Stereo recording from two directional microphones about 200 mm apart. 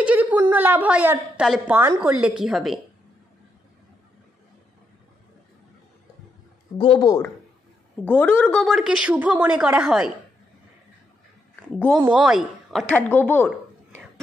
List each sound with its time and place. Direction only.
0.0 s a woman's voice: 5° right (ahead or behind)
6.8 s speech: 25° left (ahead or behind)
8.0 s a woman's voice: 10° left (ahead or behind)
11.7 s a woman's voice: 5° left (ahead or behind)